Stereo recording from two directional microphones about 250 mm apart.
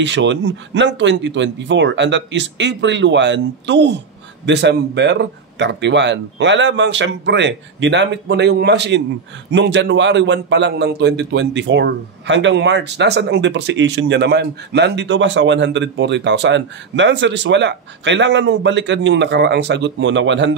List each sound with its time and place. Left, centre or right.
0.0 s a man's voice: right